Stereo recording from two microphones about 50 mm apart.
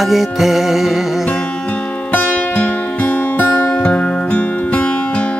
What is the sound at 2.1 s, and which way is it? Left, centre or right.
Music, left.